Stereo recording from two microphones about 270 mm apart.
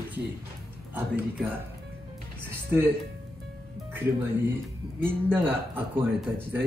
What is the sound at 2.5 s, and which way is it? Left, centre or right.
Music, centre.